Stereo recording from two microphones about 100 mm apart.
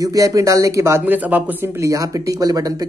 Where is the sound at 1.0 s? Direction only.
15° right (ahead or behind).